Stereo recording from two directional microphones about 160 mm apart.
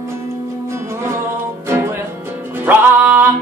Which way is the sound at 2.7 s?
10° right (ahead or behind).